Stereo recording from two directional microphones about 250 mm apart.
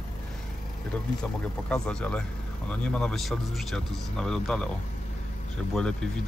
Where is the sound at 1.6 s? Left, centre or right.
Centre.